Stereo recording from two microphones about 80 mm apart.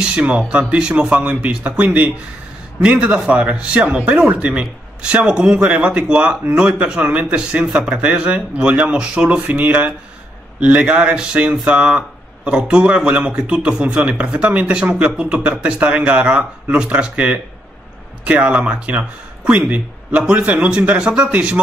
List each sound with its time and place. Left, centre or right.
0.0 s speech: centre